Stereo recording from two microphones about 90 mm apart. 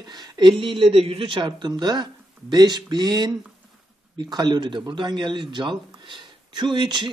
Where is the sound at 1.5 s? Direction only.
50° right (ahead or behind).